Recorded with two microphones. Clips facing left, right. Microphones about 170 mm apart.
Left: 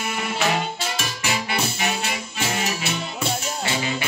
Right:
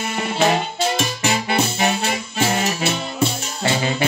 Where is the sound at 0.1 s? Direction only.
30° right (ahead or behind).